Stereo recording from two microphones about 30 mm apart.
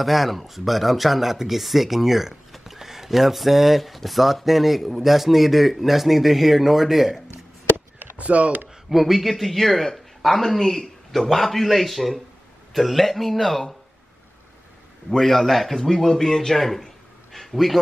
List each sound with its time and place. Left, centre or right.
0.0 s speech: centre
8.2 s speech: right
8.8 s a man's voice: centre
15.0 s a man's voice: centre
16.5 s a sound: centre